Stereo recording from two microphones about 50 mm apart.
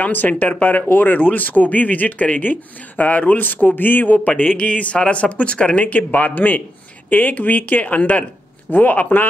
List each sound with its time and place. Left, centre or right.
0.0 s speech: left